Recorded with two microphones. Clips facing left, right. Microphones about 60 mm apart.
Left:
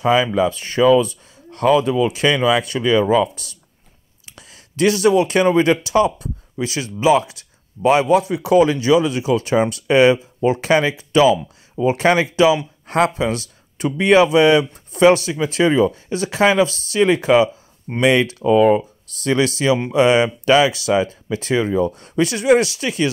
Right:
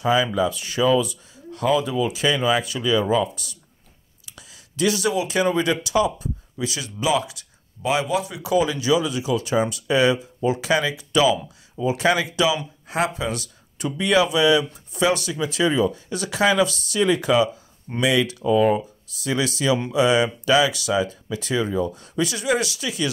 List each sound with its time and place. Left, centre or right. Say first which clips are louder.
0.0 s speech: left 4 dB; left
4.3 s speech: left 3 dB; left
12.8 s speech: left 6 dB; left
13.2 s speech: left 6 dB; left
18.4 s speech: left 6 dB; left